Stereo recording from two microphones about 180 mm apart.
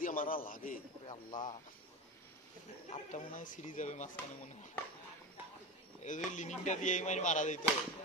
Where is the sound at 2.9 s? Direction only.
45° left (ahead or behind).